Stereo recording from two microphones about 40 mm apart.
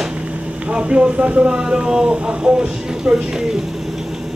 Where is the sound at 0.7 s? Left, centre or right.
Right.